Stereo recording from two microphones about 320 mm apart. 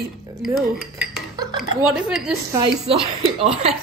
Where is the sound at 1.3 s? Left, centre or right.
Centre.